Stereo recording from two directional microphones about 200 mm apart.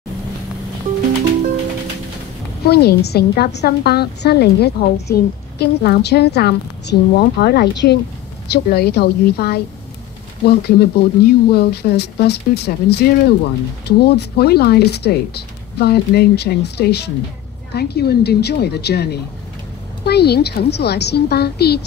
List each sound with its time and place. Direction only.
2.6 s a woman's voice: 55° left (ahead or behind)